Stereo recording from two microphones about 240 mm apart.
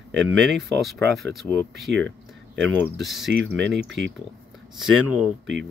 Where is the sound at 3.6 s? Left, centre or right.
Right.